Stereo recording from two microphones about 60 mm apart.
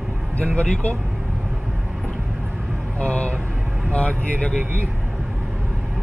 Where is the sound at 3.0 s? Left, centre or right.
Left.